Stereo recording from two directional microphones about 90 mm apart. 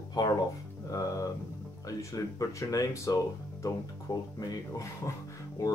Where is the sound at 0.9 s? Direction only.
35° left (ahead or behind).